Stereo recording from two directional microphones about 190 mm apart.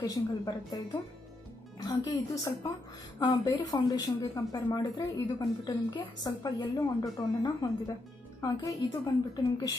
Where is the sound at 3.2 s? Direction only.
25° left (ahead or behind).